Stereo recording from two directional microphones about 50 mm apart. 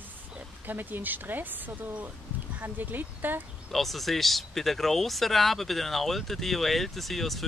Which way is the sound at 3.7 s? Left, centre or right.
Centre.